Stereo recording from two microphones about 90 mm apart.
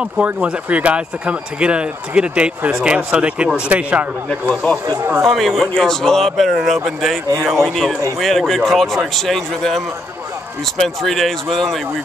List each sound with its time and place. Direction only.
0.0 s a man's voice: 15° right (ahead or behind)
5.2 s a man's voice: centre (ahead or behind)